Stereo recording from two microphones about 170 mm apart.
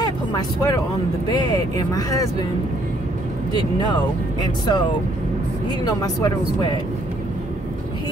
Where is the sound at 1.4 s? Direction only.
20° left (ahead or behind).